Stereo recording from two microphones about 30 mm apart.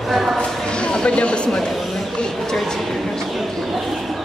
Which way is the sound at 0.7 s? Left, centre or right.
Left.